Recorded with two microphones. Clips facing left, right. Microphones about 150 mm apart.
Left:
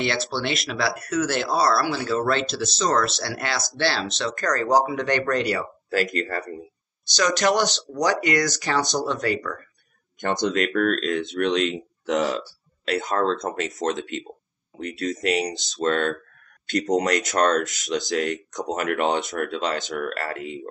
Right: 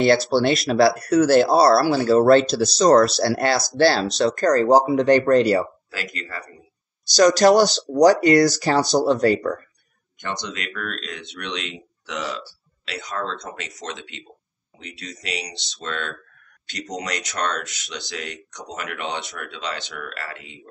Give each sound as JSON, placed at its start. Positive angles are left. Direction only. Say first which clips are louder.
{"t": 0.0, "sound": "speech", "louder": "right 9 dB", "side_deg": -40}
{"t": 5.9, "sound": "speech", "louder": "left 9 dB", "side_deg": 45}
{"t": 7.2, "sound": "speech", "louder": "right 7 dB", "side_deg": -35}
{"t": 10.2, "sound": "speech", "louder": "left 8 dB", "side_deg": 50}